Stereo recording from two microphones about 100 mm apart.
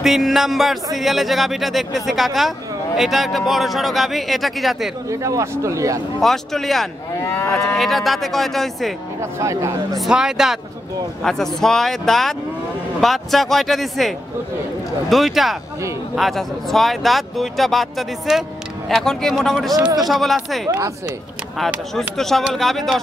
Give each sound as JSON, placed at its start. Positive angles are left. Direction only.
{"t": 0.0, "sound": "speech", "side_deg": 0}
{"t": 5.1, "sound": "a man's voice", "side_deg": -30}
{"t": 6.2, "sound": "speech", "side_deg": 5}
{"t": 7.2, "sound": "moo", "side_deg": 30}
{"t": 7.7, "sound": "speech", "side_deg": 0}
{"t": 9.4, "sound": "a man's voice", "side_deg": -30}
{"t": 9.9, "sound": "speech", "side_deg": -5}
{"t": 21.9, "sound": "speech", "side_deg": 5}